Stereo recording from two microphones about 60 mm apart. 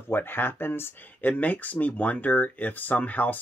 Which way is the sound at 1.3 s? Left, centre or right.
Left.